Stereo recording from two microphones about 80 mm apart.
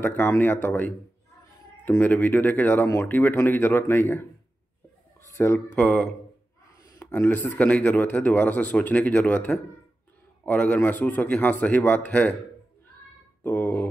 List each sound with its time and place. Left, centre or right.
0.0 s speech: left
5.3 s speech: left
5.8 s speech: left
13.4 s speech: left